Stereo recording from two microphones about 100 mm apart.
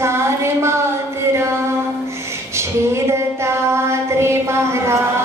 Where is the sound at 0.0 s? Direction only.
25° right (ahead or behind).